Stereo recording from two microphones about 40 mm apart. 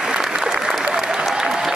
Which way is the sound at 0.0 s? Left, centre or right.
Centre.